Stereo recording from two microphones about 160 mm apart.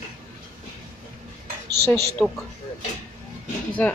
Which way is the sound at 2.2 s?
5° left (ahead or behind).